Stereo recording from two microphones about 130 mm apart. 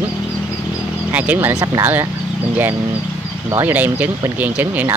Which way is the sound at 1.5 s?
25° right (ahead or behind).